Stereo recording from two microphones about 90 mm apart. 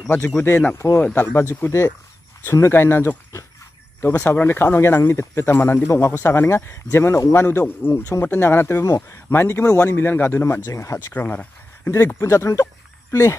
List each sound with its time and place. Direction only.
0.4 s speech: 20° left (ahead or behind)
7.4 s speech: 25° left (ahead or behind)
11.1 s speech: 15° left (ahead or behind)
11.8 s speech: 25° left (ahead or behind)